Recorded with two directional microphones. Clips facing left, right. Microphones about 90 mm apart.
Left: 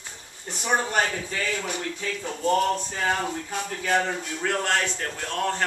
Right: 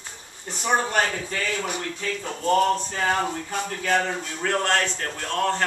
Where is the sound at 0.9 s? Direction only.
5° left (ahead or behind).